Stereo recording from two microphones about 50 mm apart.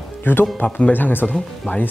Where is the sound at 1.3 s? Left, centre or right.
Centre.